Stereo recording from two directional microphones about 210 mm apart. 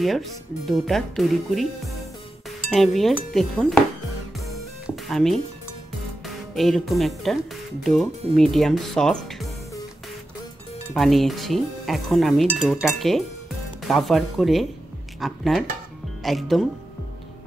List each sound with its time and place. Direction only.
0.0 s speech: centre (ahead or behind)
2.7 s speech: centre (ahead or behind)
4.8 s music: centre (ahead or behind)
6.5 s speech: centre (ahead or behind)
11.0 s speech: centre (ahead or behind)